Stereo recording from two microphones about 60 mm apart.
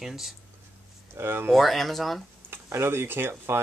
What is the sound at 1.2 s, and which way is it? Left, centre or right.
Speech, right.